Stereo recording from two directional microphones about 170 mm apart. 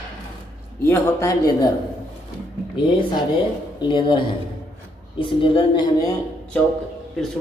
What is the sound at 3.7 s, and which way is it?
Speech, 25° left (ahead or behind).